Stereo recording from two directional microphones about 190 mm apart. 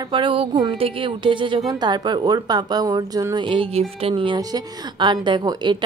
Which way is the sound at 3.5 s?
30° right (ahead or behind).